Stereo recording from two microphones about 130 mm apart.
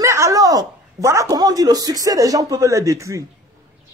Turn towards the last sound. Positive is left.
turn(degrees=-25)  # may be behind; listen again after turning